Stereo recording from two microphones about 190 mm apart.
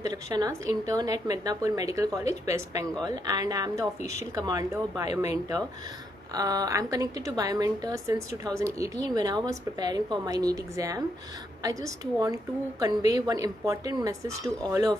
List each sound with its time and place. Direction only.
0.0 s a woman's voice: 20° right (ahead or behind)
6.3 s a woman's voice: 20° right (ahead or behind)